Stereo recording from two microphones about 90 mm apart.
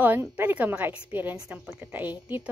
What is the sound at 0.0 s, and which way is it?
A woman's voice, 20° right (ahead or behind).